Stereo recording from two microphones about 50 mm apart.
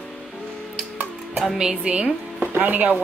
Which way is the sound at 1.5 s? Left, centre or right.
Centre.